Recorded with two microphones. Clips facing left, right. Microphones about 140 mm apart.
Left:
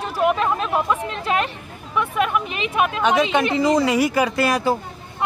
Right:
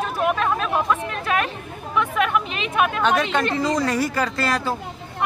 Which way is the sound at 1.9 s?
5° left (ahead or behind).